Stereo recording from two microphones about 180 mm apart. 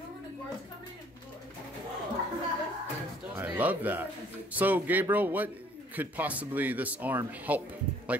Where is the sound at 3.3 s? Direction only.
10° right (ahead or behind).